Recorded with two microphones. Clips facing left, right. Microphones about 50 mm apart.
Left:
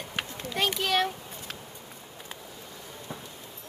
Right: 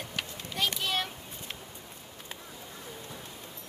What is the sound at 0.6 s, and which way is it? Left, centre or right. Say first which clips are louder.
Speech: left 5 dB; left.